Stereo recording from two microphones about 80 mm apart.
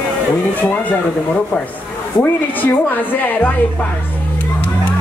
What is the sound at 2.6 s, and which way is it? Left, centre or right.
Speech, left.